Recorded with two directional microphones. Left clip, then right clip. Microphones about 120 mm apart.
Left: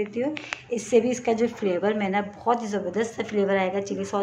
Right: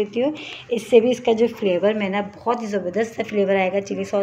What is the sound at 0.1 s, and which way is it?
A woman's voice, 25° right (ahead or behind).